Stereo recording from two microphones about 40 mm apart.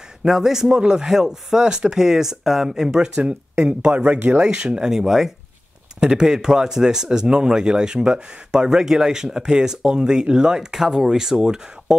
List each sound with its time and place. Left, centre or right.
0.3 s a man's voice: centre
0.7 s a man's voice: right
3.9 s speech: right
4.4 s a man's voice: right